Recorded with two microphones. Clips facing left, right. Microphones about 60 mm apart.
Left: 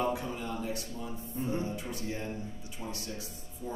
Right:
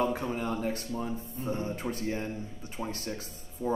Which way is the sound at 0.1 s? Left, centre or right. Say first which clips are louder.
Right 4 dB; right.